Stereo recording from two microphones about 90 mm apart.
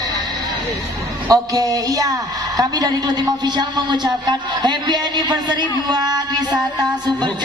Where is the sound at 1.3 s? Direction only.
40° right (ahead or behind).